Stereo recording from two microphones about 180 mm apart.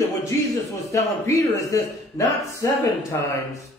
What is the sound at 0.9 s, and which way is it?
Speech, 15° left (ahead or behind).